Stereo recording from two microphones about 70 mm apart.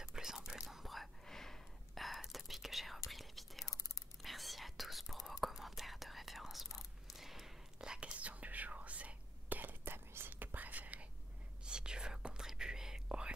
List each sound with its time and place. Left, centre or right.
0.0 s whispering: centre
3.6 s whispering: left
4.2 s whispering: centre